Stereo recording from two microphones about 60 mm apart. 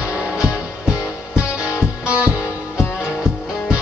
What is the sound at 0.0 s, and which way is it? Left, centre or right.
Music, centre.